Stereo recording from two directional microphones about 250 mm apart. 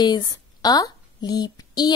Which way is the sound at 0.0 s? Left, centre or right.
Centre.